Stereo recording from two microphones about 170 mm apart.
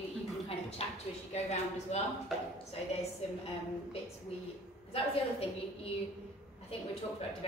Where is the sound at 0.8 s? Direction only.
35° left (ahead or behind).